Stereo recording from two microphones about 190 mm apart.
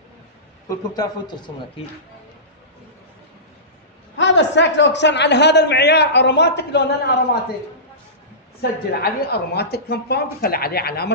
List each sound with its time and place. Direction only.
0.7 s a man's voice: 20° left (ahead or behind)
4.2 s a man's voice: 70° left (ahead or behind)
8.5 s a man's voice: 55° left (ahead or behind)